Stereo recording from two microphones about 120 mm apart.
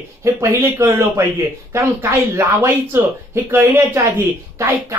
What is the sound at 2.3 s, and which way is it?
Speech, 20° right (ahead or behind).